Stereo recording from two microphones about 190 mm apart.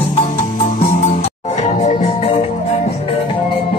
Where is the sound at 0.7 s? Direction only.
35° left (ahead or behind).